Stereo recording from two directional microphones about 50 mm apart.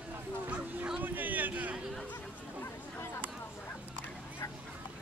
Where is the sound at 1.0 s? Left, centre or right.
Right.